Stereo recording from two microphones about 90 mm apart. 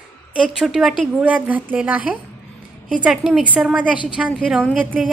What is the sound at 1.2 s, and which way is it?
A woman's voice, 15° right (ahead or behind).